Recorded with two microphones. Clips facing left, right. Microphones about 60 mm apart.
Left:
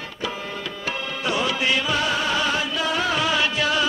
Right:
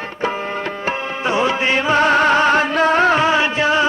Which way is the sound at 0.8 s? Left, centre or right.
Right.